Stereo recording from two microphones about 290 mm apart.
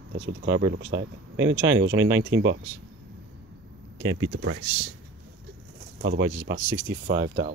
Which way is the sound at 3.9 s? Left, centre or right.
Centre.